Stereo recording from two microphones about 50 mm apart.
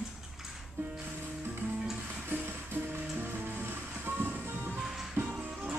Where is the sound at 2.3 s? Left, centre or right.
Right.